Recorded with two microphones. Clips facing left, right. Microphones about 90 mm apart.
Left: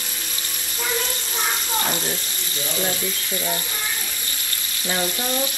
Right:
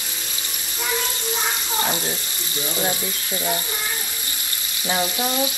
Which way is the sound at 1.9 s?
20° right (ahead or behind).